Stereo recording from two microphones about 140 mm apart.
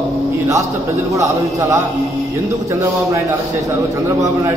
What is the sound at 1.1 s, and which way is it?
Speech, 20° right (ahead or behind).